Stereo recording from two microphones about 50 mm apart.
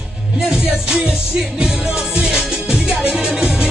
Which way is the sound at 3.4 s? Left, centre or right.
Right.